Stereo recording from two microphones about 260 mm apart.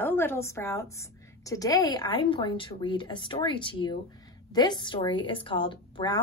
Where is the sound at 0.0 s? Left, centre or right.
Centre.